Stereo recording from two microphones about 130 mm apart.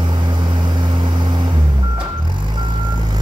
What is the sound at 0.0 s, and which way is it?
Vehicle, 35° right (ahead or behind).